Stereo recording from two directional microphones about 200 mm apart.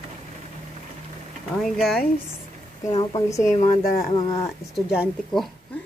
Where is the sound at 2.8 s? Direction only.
30° left (ahead or behind).